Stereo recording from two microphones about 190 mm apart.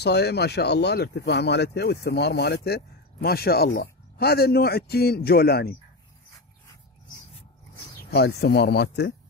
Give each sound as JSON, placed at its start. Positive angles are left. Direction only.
{"t": 0.0, "sound": "speech", "side_deg": 60}
{"t": 8.1, "sound": "speech", "side_deg": 60}